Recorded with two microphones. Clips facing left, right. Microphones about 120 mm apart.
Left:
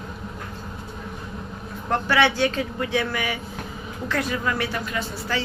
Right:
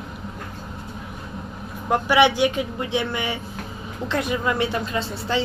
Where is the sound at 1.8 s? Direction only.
15° right (ahead or behind).